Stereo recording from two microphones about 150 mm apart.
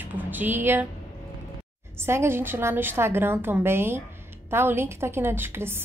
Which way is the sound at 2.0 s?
15° right (ahead or behind).